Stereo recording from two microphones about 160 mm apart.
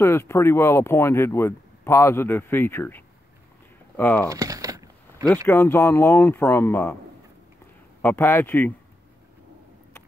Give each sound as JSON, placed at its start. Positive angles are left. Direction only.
{"t": 0.0, "sound": "speech", "side_deg": 15}
{"t": 4.3, "sound": "a sound", "side_deg": -25}
{"t": 5.5, "sound": "speech", "side_deg": 15}
{"t": 8.0, "sound": "speech", "side_deg": 15}